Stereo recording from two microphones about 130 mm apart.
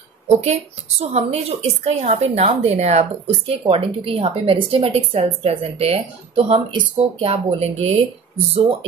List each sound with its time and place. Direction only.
0.3 s a woman's voice: 55° right (ahead or behind)
3.6 s a woman's voice: 45° right (ahead or behind)